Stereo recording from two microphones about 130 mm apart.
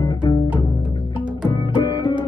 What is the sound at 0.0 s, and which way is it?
Music, 35° left (ahead or behind).